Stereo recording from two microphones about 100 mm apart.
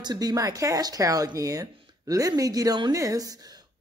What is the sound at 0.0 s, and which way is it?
A man's voice, 40° right (ahead or behind).